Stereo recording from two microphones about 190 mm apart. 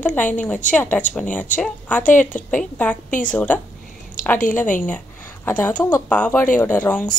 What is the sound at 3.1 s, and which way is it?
Speech, 45° left (ahead or behind).